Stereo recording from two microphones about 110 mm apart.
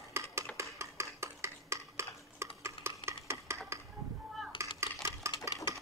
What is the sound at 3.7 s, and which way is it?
Music, 25° right (ahead or behind).